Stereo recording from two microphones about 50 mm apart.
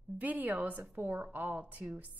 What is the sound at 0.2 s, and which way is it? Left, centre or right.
A woman's voice, right.